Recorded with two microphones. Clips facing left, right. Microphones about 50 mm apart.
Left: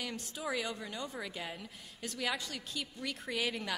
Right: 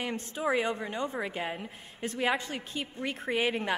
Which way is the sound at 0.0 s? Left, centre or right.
Right.